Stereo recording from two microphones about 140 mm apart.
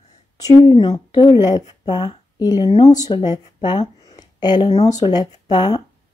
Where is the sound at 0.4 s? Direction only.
30° left (ahead or behind).